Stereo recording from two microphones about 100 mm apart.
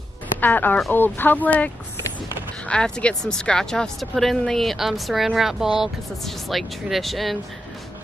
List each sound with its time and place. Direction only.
0.4 s speech: 20° left (ahead or behind)
2.7 s speech: 10° left (ahead or behind)